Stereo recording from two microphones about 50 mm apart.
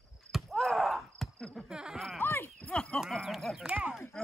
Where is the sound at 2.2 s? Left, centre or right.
Left.